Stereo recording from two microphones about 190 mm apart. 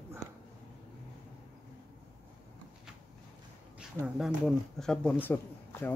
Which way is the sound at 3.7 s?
5° right (ahead or behind).